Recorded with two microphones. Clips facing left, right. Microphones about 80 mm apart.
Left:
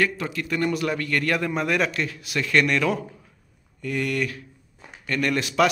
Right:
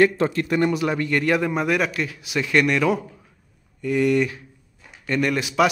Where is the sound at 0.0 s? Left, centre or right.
Right.